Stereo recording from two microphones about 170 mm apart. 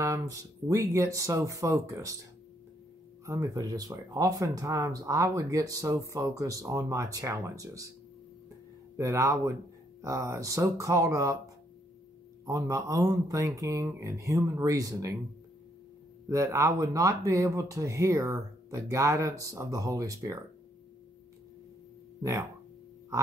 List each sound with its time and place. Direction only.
0.0 s speech: 20° right (ahead or behind)
3.3 s speech: 20° right (ahead or behind)
8.9 s speech: 20° right (ahead or behind)
16.3 s speech: 20° right (ahead or behind)